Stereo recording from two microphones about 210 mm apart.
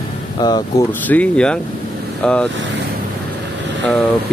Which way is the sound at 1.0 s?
5° left (ahead or behind).